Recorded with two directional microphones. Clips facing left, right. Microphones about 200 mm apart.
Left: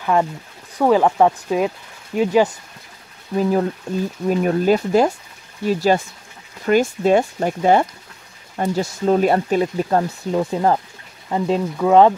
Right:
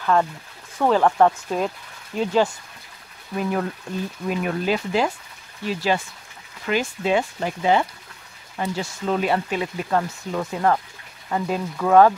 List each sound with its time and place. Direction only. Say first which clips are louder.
0.0 s speech: left 2 dB; 15° left (ahead or behind)
3.3 s speech: left 6 dB; 30° left (ahead or behind)